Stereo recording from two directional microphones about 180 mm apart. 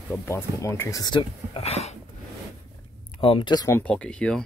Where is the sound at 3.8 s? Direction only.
5° left (ahead or behind).